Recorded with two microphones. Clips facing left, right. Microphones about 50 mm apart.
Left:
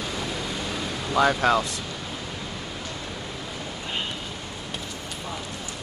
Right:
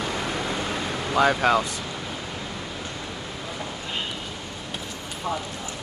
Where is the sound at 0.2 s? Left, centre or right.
Right.